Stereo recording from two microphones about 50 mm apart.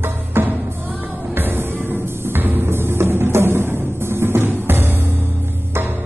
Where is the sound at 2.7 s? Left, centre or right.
Right.